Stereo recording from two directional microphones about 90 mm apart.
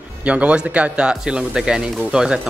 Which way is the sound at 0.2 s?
15° right (ahead or behind).